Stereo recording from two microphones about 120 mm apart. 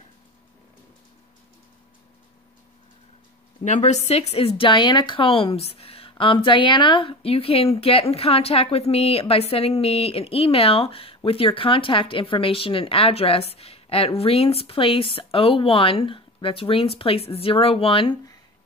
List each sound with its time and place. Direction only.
3.6 s a woman's voice: 80° left; by 18.1 s 50° left (ahead or behind)